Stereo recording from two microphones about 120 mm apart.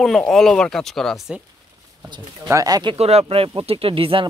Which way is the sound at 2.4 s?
30° right (ahead or behind).